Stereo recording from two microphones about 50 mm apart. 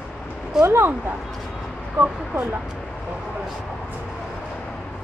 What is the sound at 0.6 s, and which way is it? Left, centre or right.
Speech, right.